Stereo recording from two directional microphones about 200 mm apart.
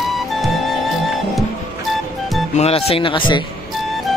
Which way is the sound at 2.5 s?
30° left (ahead or behind).